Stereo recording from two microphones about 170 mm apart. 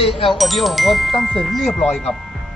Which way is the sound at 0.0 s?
35° left (ahead or behind).